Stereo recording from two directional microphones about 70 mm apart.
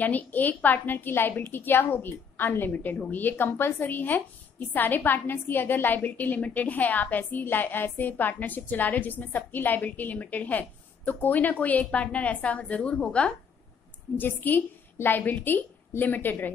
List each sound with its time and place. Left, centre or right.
0.0 s a woman's voice: left
14.1 s a woman's voice: left